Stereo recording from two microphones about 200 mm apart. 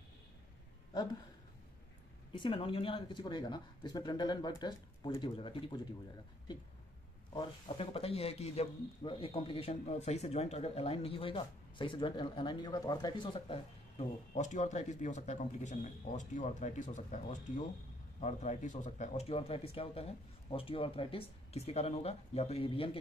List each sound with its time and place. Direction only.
2.3 s speech: 25° left (ahead or behind)
7.3 s speech: 25° left (ahead or behind)